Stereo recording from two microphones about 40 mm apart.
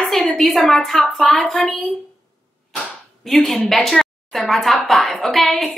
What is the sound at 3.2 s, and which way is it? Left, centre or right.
Speech, centre.